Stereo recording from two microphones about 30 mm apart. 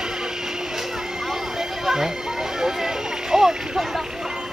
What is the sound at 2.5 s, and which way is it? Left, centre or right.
Vehicle, centre.